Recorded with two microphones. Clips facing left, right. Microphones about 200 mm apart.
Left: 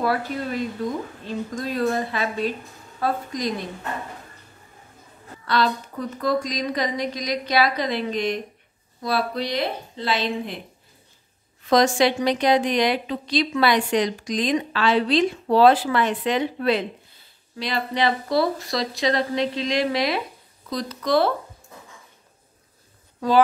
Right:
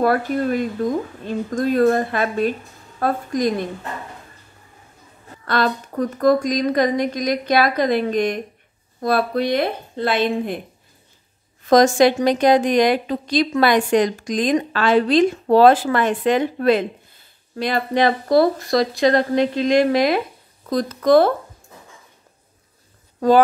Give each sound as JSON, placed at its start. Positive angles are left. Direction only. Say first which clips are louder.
{"t": 0.0, "sound": "a woman's voice", "louder": "right 6 dB", "side_deg": -50}
{"t": 5.4, "sound": "a woman's voice", "louder": "right 2 dB", "side_deg": -50}
{"t": 11.6, "sound": "a woman's voice", "louder": "right 5 dB", "side_deg": -45}